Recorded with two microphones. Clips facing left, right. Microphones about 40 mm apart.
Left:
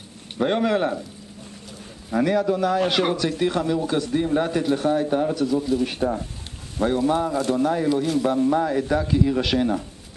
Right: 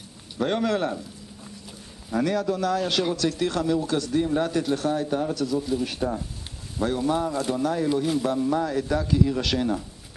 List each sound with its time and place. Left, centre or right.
0.4 s speech: centre
2.0 s speech: centre
7.9 s speech: centre
8.2 s speech: centre